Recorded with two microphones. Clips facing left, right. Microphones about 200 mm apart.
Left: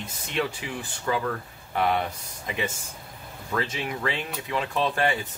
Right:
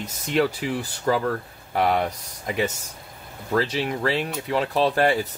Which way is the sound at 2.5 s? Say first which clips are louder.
Right 5 dB; 40° right (ahead or behind).